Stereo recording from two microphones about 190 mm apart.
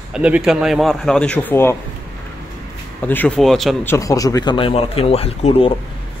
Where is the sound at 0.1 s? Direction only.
5° right (ahead or behind); by 1.8 s 10° left (ahead or behind).